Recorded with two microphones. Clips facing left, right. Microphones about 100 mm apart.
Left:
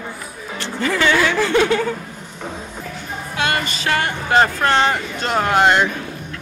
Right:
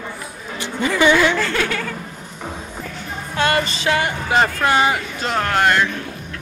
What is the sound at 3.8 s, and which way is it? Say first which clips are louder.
Speech: left 2 dB; 15° right (ahead or behind).